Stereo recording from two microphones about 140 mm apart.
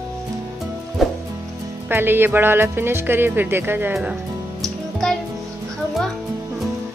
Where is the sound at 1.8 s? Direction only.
15° right (ahead or behind).